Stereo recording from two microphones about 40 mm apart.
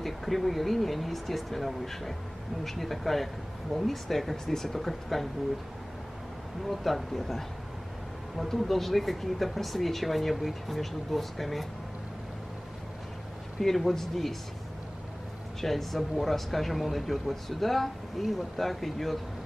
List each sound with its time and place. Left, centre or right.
0.0 s speech: centre
6.7 s speech: centre
13.6 s speech: centre
15.6 s speech: centre